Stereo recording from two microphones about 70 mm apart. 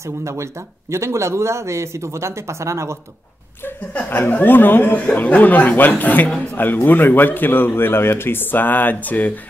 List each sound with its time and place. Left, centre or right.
0.0 s speech: right
4.1 s speech: left